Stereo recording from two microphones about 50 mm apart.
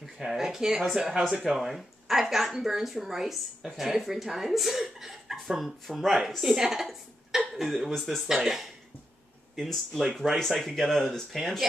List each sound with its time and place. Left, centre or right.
0.0 s a woman's voice: centre
9.6 s speech: centre